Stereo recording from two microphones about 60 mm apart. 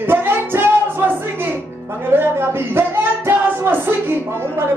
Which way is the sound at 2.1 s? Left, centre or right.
Right.